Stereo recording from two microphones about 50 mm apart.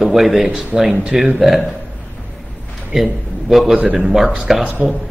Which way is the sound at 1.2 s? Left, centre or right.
Centre.